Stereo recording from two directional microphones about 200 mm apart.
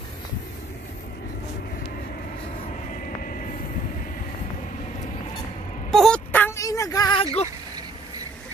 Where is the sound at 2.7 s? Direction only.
40° left (ahead or behind).